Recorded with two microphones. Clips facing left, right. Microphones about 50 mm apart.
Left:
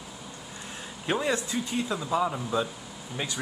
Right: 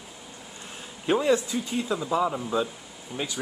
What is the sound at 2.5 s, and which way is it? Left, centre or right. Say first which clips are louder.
Speech: right 1 dB; centre.